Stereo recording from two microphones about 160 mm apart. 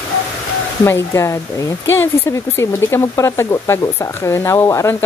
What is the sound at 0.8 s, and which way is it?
Speech, 15° left (ahead or behind).